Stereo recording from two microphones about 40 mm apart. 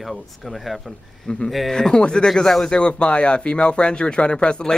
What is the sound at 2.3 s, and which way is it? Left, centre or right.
Speech, centre.